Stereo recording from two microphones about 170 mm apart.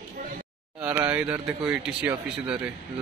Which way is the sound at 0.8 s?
10° right (ahead or behind).